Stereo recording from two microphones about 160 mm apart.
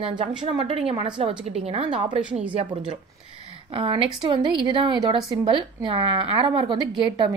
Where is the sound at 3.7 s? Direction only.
35° right (ahead or behind).